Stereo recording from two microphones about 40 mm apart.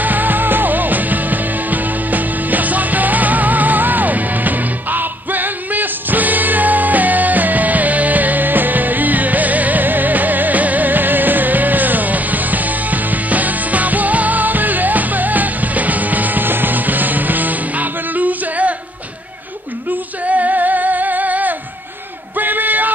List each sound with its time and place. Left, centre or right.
0.0 s music: right
19.9 s female singing: right
22.4 s a sound: right